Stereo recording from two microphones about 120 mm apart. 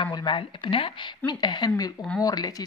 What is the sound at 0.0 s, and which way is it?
Speech, 40° left (ahead or behind).